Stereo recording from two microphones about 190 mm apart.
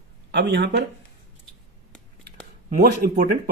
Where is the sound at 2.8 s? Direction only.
50° right (ahead or behind).